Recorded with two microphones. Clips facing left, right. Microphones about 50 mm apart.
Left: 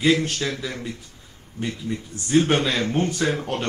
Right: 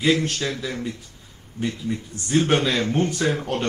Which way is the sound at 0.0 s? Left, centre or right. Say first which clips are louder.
Left 1 dB; centre.